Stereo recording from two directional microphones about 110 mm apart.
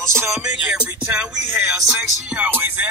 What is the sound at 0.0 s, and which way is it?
Music, 25° right (ahead or behind).